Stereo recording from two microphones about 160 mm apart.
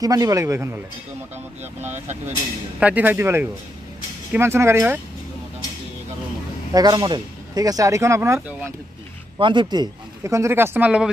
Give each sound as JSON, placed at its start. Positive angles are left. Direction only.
{"t": 0.0, "sound": "speech", "side_deg": -20}
{"t": 1.6, "sound": "speech", "side_deg": -45}
{"t": 2.8, "sound": "speech", "side_deg": -10}
{"t": 6.7, "sound": "speech", "side_deg": -25}
{"t": 9.4, "sound": "speech", "side_deg": -30}